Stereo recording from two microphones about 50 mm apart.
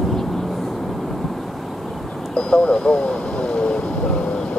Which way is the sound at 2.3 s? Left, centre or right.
Centre.